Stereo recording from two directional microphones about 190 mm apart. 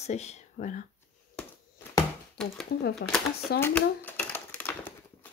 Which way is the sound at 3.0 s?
55° left (ahead or behind).